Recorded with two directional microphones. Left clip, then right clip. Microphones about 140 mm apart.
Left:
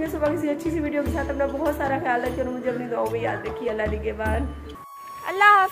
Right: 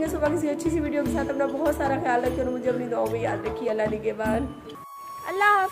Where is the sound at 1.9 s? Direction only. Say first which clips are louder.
Even; 20° right (ahead or behind).